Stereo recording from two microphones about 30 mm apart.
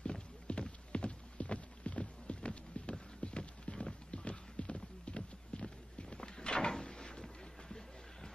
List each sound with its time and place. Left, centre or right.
0.5 s clip-clop: left
6.7 s cupboard open or close: left